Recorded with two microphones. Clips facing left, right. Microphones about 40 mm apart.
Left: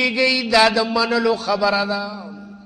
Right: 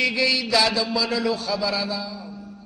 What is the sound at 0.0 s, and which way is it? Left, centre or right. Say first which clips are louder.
A man's voice: left 4 dB; left.